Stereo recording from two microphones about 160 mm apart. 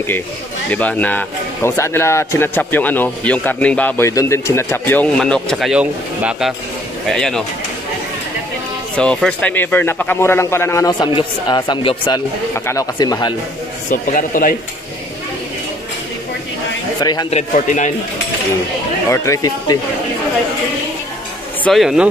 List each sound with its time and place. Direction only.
0.7 s a man's voice: 10° left (ahead or behind)
8.9 s a man's voice: 5° left (ahead or behind); by 13.3 s 25° left (ahead or behind)
13.8 s a man's voice: 55° left (ahead or behind)
17.0 s speech: 25° left (ahead or behind)
17.3 s a man's voice: 45° left (ahead or behind)
19.0 s speech: 20° left (ahead or behind)
21.6 s speech: centre (ahead or behind)